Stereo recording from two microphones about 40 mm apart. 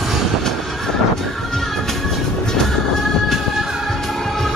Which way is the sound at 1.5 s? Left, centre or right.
Centre.